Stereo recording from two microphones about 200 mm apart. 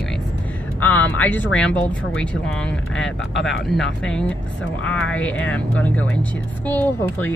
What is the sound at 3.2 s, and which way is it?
Speech, 65° left (ahead or behind).